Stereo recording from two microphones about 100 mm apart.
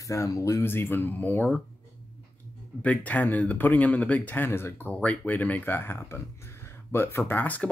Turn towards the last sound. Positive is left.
turn(degrees=15)  # may be behind; listen again after turning